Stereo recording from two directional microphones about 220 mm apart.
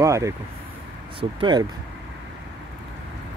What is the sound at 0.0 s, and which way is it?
Speech, 15° right (ahead or behind).